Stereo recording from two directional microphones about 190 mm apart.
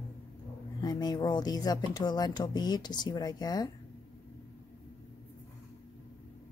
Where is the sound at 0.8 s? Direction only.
20° left (ahead or behind).